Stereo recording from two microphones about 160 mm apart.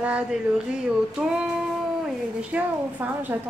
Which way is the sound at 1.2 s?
5° right (ahead or behind).